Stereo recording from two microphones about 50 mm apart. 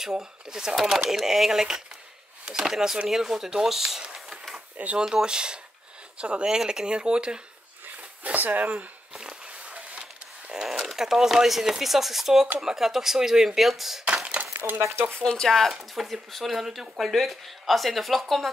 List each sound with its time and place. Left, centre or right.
0.0 s speech: centre
4.0 s a sound: centre
4.7 s speech: right
5.0 s speech: centre
7.8 s a sound: right
9.7 s printer: right
10.5 s speech: centre
14.5 s a sound: right
14.8 s speech: right
15.2 s speech: centre
15.8 s speech: centre